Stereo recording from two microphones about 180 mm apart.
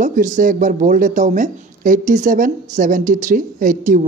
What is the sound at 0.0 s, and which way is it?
Speech, 45° right (ahead or behind).